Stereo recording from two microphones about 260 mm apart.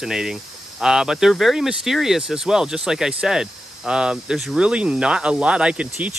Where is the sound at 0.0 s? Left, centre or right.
Centre.